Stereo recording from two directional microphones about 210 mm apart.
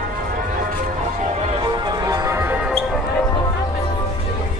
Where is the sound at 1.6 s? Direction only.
20° right (ahead or behind).